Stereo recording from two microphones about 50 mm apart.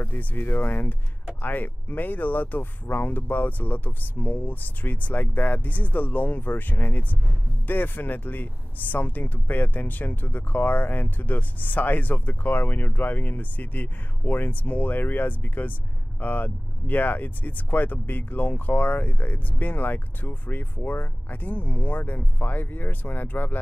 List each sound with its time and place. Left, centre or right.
0.0 s speech: left